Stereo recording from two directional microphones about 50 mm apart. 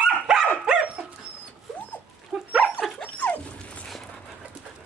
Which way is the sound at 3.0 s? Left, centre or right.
Left.